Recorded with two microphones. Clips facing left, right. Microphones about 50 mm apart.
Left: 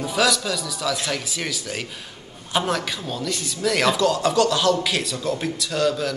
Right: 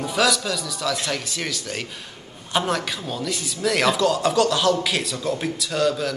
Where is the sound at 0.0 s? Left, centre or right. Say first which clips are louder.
Even; centre.